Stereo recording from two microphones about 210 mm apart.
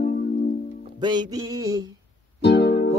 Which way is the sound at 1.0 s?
20° right (ahead or behind).